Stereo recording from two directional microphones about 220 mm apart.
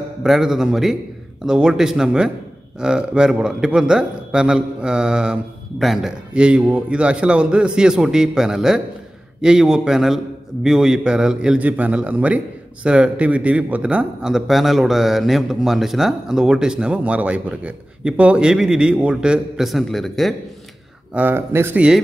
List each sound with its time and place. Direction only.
0.2 s a man's voice: centre (ahead or behind)